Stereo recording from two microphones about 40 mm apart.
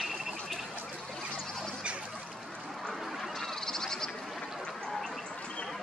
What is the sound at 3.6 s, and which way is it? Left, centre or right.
Frog, centre.